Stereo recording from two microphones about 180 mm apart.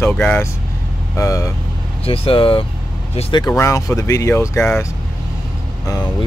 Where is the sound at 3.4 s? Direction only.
15° left (ahead or behind).